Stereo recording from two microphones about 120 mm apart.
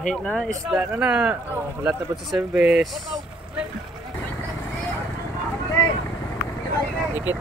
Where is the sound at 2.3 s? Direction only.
5° right (ahead or behind).